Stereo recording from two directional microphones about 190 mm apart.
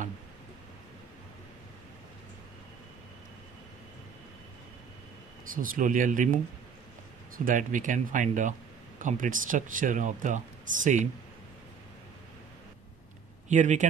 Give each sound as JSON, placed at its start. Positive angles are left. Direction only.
{"t": 5.5, "sound": "speech", "side_deg": -45}
{"t": 13.5, "sound": "speech", "side_deg": -40}